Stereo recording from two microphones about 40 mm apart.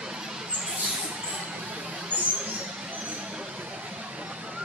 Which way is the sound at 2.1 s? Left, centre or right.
Right.